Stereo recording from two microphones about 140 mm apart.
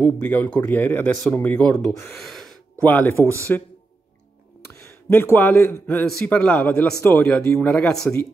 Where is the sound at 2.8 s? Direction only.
15° left (ahead or behind).